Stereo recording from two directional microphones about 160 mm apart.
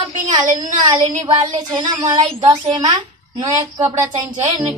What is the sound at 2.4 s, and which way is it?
Speech, 25° right (ahead or behind).